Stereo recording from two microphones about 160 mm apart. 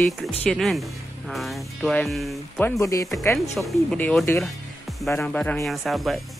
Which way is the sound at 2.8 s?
20° left (ahead or behind).